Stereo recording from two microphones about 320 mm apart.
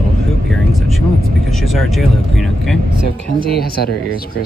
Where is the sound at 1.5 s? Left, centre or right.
Centre.